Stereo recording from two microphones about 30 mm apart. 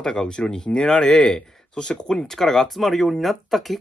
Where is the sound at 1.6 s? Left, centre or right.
Left.